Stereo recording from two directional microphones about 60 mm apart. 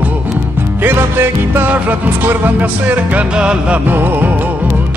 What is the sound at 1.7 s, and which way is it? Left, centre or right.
Music, right.